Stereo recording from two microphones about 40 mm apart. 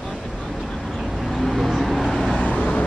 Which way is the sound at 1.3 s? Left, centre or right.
Centre.